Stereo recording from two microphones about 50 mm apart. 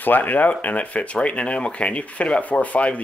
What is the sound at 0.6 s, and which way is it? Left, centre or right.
Speech, left.